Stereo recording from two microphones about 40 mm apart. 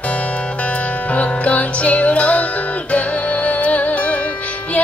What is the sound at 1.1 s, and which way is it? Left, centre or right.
Music, left.